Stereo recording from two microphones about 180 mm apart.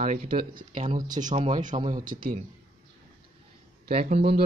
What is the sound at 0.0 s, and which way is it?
Speech, 50° right (ahead or behind).